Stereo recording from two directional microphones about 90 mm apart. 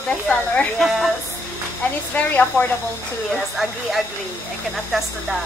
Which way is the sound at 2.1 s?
20° left (ahead or behind).